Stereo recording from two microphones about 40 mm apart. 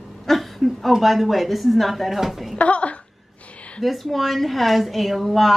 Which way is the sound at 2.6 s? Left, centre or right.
Left.